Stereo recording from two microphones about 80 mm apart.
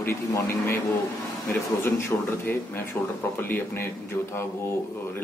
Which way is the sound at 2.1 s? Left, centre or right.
Left.